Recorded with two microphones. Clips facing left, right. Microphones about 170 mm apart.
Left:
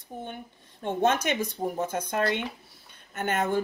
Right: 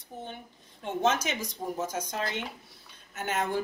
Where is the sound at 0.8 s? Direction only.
55° left (ahead or behind).